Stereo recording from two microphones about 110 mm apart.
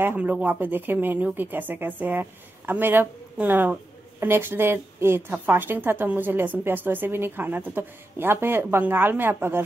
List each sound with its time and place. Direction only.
0.0 s a woman's voice: 15° right (ahead or behind)